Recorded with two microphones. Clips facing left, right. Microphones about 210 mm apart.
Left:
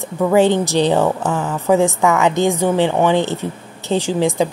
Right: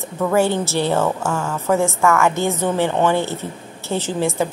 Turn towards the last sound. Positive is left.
turn(degrees=15)  # may be behind; listen again after turning